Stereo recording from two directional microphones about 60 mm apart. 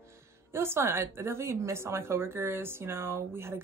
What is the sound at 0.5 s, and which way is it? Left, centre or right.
A woman's voice, right.